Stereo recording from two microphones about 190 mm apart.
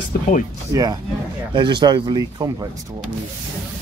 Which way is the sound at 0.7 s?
15° right (ahead or behind).